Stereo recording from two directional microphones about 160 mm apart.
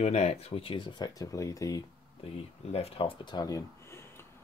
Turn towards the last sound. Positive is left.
turn(degrees=15)  # may be behind; listen again after turning